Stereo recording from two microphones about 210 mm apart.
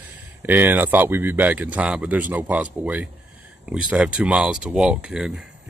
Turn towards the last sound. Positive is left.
turn(degrees=-5)  # may be behind; listen again after turning